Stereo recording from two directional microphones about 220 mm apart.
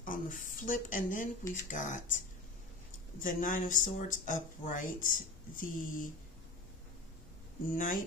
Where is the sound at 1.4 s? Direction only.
15° left (ahead or behind).